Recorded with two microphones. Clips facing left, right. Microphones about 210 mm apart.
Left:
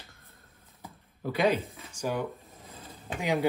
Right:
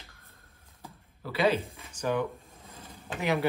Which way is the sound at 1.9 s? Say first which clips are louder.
Right 2 dB; 10° left (ahead or behind).